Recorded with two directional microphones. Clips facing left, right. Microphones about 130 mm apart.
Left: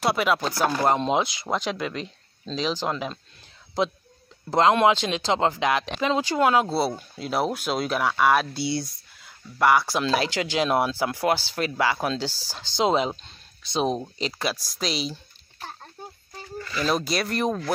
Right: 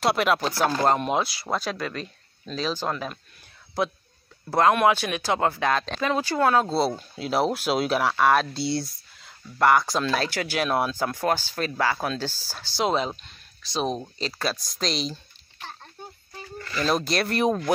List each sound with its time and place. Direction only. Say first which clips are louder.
0.0 s speech: right 1 dB; centre (ahead or behind)
0.8 s speech: left 1 dB; 20° left (ahead or behind)
4.5 s speech: left 1 dB; 20° left (ahead or behind)
7.0 s speech: right 2 dB; centre (ahead or behind)
10.0 s speech: left 2 dB; 15° left (ahead or behind)
16.7 s speech: right 1 dB; centre (ahead or behind)